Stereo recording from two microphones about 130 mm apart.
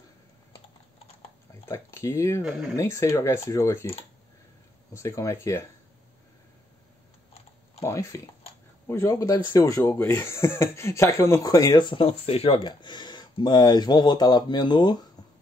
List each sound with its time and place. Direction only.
1.7 s speech: 20° left (ahead or behind)
4.9 s speech: 25° left (ahead or behind)
7.8 s speech: 20° left (ahead or behind)